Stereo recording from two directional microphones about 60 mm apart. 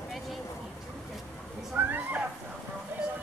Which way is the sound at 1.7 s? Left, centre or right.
Right.